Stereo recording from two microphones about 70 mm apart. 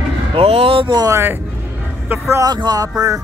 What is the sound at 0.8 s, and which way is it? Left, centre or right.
Speech, right.